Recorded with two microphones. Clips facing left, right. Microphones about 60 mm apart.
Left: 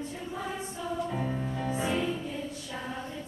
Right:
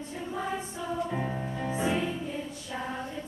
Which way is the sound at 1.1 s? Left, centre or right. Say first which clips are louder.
Even; right.